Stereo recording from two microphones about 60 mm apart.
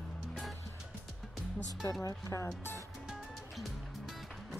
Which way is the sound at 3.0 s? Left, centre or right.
Centre.